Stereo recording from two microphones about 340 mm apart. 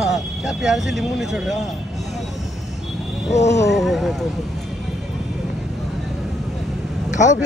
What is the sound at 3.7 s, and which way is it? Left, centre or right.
Speech, centre.